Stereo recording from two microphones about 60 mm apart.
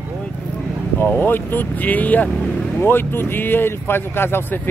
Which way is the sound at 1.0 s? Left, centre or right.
Left.